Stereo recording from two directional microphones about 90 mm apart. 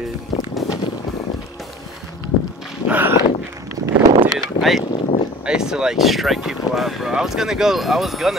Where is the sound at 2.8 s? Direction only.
20° right (ahead or behind).